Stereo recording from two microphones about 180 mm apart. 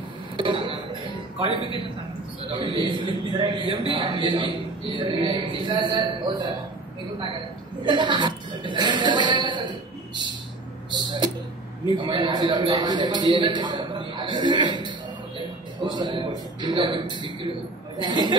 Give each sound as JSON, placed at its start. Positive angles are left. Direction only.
{"t": 0.4, "sound": "music", "side_deg": -30}
{"t": 2.4, "sound": "a man's voice", "side_deg": -30}
{"t": 7.8, "sound": "speech", "side_deg": -25}
{"t": 10.9, "sound": "a sound", "side_deg": -25}
{"t": 12.0, "sound": "a man's voice", "side_deg": -25}